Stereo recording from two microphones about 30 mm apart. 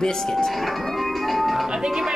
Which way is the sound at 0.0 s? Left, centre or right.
Left.